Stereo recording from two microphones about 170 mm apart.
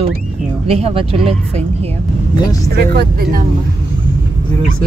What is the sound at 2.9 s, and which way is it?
Speech, 60° right (ahead or behind).